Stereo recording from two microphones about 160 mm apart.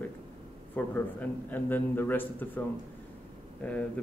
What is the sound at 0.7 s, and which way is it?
A man's voice, 10° left (ahead or behind).